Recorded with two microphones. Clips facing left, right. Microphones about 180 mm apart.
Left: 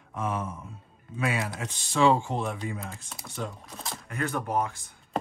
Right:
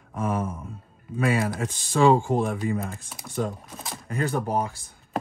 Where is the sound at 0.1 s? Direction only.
50° right (ahead or behind).